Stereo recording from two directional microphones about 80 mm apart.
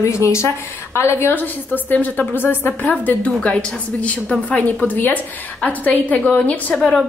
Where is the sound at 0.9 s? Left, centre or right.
Left.